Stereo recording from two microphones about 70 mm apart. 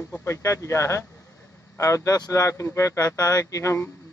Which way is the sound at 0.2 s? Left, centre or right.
Left.